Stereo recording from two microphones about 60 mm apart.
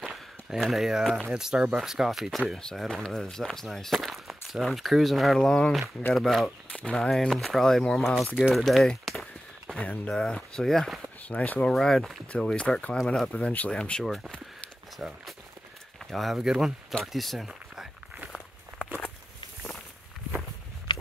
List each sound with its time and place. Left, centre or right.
0.0 s speech: centre
6.7 s speech: centre
7.1 s speech: centre
9.0 s a sound: centre
9.8 s speech: left
10.1 s speech: centre
11.2 s speech: left
12.3 s speech: centre
13.3 s speech: left
15.0 s speech: centre
17.0 s a sound: centre